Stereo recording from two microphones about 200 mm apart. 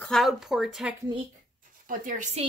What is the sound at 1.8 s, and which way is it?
Speech, 40° right (ahead or behind).